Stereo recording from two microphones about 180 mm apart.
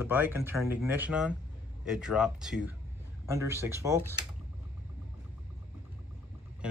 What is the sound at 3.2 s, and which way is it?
Speech, 15° right (ahead or behind).